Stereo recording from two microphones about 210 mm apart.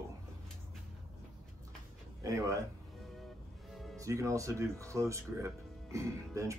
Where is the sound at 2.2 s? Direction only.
15° right (ahead or behind).